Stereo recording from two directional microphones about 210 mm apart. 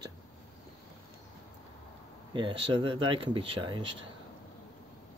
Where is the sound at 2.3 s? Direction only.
25° right (ahead or behind).